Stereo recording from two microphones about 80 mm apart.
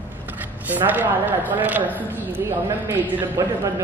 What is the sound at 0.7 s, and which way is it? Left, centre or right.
Speech, right.